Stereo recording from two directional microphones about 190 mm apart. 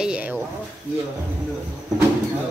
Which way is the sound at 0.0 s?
5° right (ahead or behind).